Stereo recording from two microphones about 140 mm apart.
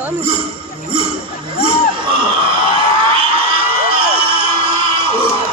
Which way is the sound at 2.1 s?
35° right (ahead or behind).